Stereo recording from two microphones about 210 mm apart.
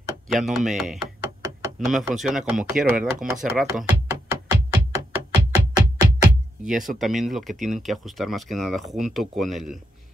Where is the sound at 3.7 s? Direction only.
10° right (ahead or behind).